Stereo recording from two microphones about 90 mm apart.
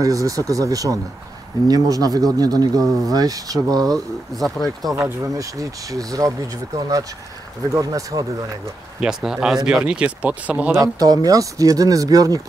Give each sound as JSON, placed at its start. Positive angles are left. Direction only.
{"t": 0.0, "sound": "speech", "side_deg": -40}
{"t": 3.9, "sound": "speech", "side_deg": 0}
{"t": 5.0, "sound": "speech", "side_deg": -40}
{"t": 9.0, "sound": "speech", "side_deg": -5}
{"t": 10.8, "sound": "speech", "side_deg": -40}